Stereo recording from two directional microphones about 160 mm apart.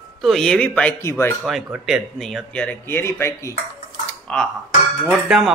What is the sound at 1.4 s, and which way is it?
Speech, centre (ahead or behind).